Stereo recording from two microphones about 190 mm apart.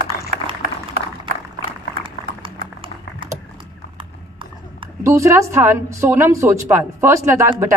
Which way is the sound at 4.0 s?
25° right (ahead or behind).